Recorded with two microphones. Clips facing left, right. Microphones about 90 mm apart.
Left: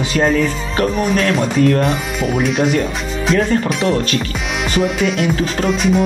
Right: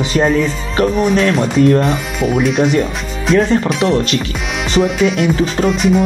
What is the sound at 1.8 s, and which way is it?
Music, centre (ahead or behind).